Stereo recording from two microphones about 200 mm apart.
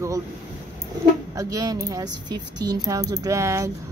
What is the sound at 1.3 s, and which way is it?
Speech, 20° right (ahead or behind).